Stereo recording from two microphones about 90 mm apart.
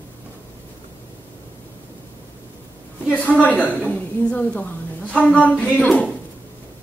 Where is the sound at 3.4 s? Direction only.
15° left (ahead or behind).